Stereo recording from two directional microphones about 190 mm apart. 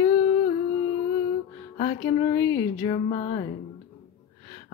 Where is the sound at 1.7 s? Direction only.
25° left (ahead or behind).